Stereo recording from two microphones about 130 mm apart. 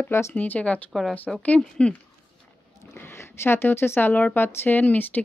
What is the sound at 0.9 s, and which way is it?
Speech, centre (ahead or behind).